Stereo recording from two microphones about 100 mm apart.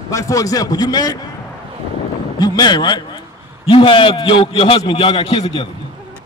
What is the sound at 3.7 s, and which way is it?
A man's voice, 60° left (ahead or behind).